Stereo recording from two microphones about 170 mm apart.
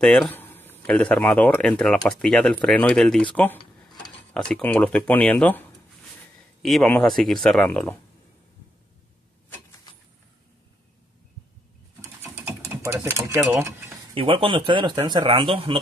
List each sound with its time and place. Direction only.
0.0 s speech: centre (ahead or behind)
12.4 s typing: 15° right (ahead or behind)
13.4 s speech: 15° right (ahead or behind)
14.1 s speech: 30° right (ahead or behind)